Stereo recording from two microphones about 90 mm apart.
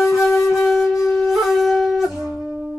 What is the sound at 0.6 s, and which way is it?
Wind instrument, 5° left (ahead or behind).